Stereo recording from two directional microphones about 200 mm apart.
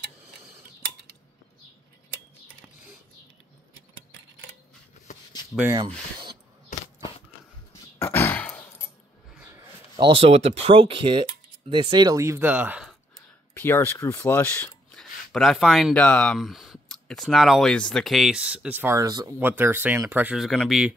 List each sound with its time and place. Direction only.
5.6 s speech: 15° right (ahead or behind)
8.0 s a sound: 10° left (ahead or behind)
9.9 s speech: 25° right (ahead or behind); by 12.9 s 5° right (ahead or behind)
13.6 s speech: 10° left (ahead or behind)